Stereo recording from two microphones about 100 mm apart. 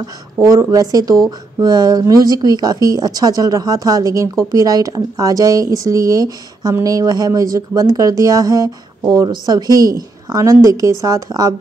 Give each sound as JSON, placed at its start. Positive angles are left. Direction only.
{"t": 0.0, "sound": "speech", "side_deg": -35}